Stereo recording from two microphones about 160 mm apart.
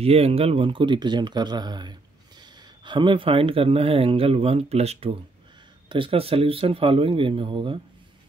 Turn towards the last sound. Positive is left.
turn(degrees=-30)  # may be behind; listen again after turning